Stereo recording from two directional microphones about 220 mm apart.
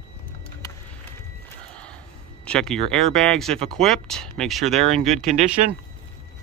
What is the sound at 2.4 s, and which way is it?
Speech, 5° left (ahead or behind).